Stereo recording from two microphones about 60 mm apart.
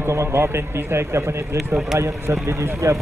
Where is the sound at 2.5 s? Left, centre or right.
Right.